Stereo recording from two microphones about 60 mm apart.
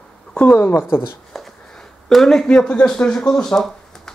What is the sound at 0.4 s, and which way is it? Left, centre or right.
Speech, left.